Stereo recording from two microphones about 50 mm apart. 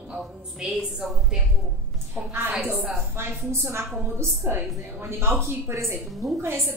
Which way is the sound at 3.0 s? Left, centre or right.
Right.